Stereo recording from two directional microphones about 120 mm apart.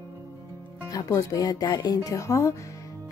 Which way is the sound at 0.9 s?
30° left (ahead or behind).